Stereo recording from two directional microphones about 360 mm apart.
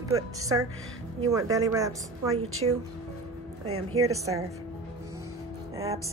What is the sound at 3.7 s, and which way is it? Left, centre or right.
Speech, right.